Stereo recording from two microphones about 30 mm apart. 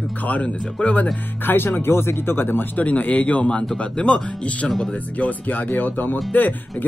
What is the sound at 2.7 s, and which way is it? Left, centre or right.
A man's voice, left.